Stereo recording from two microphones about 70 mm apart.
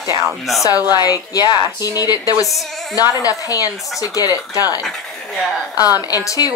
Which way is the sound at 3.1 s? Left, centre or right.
Left.